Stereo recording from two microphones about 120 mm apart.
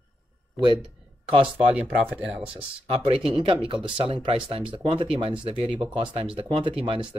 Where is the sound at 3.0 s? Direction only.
50° right (ahead or behind).